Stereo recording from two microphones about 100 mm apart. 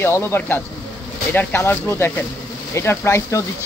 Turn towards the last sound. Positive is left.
turn(degrees=25)  # may be behind; listen again after turning